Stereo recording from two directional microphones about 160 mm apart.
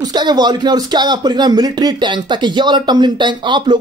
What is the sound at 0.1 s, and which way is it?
Speech, 25° right (ahead or behind).